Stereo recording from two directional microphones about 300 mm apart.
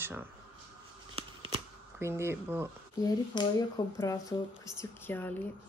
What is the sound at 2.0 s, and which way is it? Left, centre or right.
Speech, centre.